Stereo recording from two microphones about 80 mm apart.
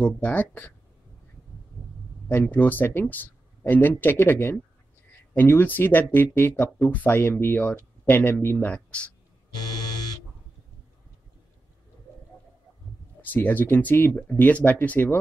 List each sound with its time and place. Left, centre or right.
0.0 s speech: left
2.2 s speech: left
13.2 s speech: left